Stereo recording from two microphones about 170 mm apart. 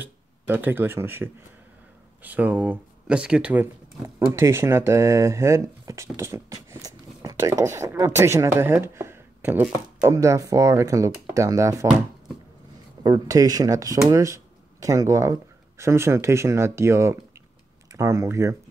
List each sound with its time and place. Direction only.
0.0 s speech: 10° right (ahead or behind)
13.0 s speech: 20° right (ahead or behind)